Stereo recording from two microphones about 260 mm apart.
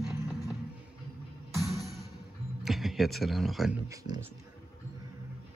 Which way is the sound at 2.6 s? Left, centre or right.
Centre.